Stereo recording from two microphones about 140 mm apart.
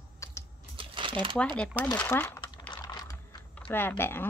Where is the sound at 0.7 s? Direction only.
40° right (ahead or behind).